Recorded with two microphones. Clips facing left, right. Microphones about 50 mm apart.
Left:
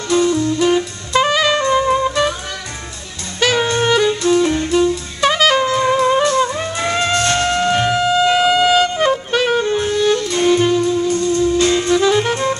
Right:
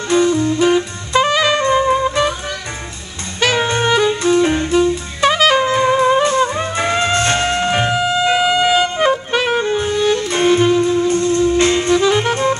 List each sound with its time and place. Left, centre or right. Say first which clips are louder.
0.1 s music: right 1 dB; centre
0.7 s saxophone: right 1 dB; centre
1.8 s music: right 1 dB; centre
3.3 s saxophone: even; centre
3.8 s music: even; centre
4.4 s music: right 1 dB; right
4.7 s saxophone: right 1 dB; centre
5.7 s music: right 1 dB; centre
7.9 s music: left 1 dB; centre; by 10.6 s right
10.6 s music: right 2 dB; centre
11.1 s music: right 1 dB; right
11.9 s music: even; centre